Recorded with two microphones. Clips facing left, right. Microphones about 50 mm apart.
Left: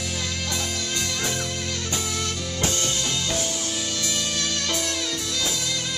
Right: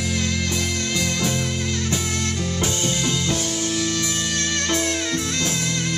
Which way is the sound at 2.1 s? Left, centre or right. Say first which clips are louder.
Right 4 dB; right.